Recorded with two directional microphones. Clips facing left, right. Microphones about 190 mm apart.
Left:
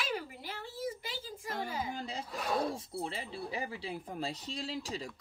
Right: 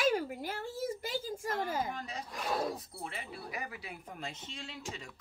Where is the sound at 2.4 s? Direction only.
Centre (ahead or behind).